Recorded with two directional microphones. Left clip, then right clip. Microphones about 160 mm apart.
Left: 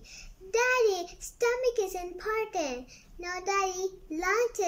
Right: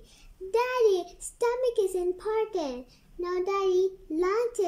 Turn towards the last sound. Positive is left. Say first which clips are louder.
# right 1 dB
turn(degrees=-25)  # may be behind; listen again after turning